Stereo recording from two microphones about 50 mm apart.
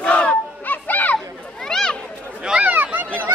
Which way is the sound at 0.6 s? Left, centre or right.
Left.